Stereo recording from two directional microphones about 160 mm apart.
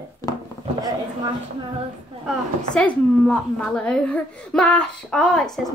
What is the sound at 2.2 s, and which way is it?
A woman's voice, 5° left (ahead or behind).